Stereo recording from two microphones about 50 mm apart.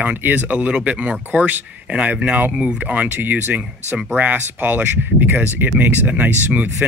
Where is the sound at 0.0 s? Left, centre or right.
Right.